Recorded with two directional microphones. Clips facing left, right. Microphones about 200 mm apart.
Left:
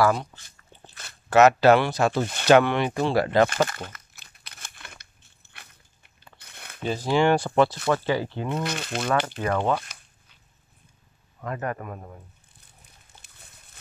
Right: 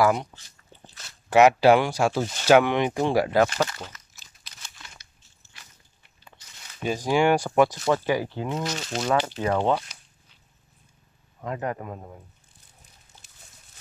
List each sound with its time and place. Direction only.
0.0 s speech: 20° right (ahead or behind)
1.3 s speech: 10° right (ahead or behind)
3.4 s crumpling: 55° left (ahead or behind)
6.3 s biting: 60° left (ahead or behind)
6.8 s speech: 10° right (ahead or behind)
8.6 s speech: 55° left (ahead or behind)
9.4 s speech: 15° right (ahead or behind)
11.4 s speech: 15° right (ahead or behind)
13.1 s a sound: 60° left (ahead or behind)